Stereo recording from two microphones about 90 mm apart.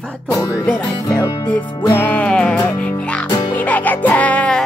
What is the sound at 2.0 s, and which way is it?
Music, 15° left (ahead or behind).